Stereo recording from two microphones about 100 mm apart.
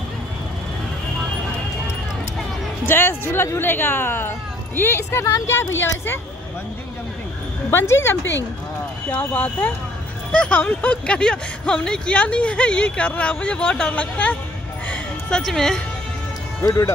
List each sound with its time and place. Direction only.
2.8 s speech: 20° left (ahead or behind)
7.7 s speech: 25° left (ahead or behind)
14.9 s a sound: 10° left (ahead or behind)
16.6 s speech: 30° left (ahead or behind)